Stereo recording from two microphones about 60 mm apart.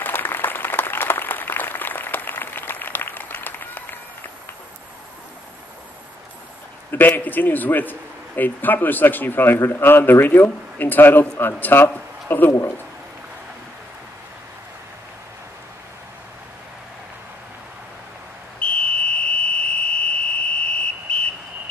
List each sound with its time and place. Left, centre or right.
0.0 s applause: left
6.9 s a man's voice: left
18.6 s fire alarm: centre